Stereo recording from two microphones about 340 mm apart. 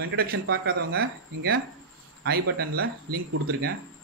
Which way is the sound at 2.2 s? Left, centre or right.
Right.